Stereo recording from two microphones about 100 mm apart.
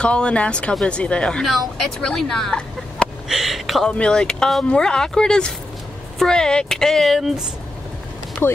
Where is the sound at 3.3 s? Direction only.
5° right (ahead or behind).